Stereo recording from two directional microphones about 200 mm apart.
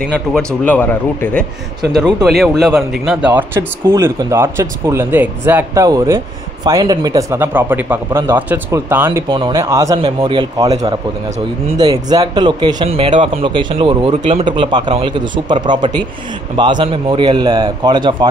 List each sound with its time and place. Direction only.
0.1 s a man's voice: 5° left (ahead or behind); by 18.3 s 20° right (ahead or behind)